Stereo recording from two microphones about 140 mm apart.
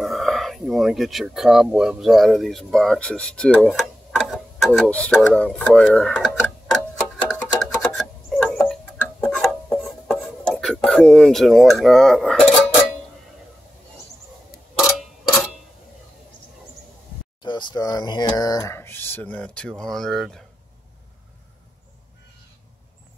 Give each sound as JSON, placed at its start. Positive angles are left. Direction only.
{"t": 0.0, "sound": "speech", "side_deg": 0}
{"t": 7.8, "sound": "a sound", "side_deg": 0}
{"t": 11.8, "sound": "cutlery", "side_deg": 0}
{"t": 17.4, "sound": "speech", "side_deg": 35}